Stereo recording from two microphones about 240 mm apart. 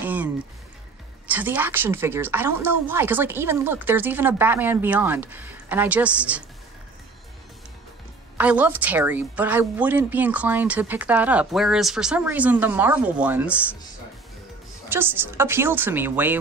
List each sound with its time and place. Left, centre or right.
0.0 s music: centre
1.2 s a woman's voice: centre
8.4 s a woman's voice: centre
14.9 s a woman's voice: centre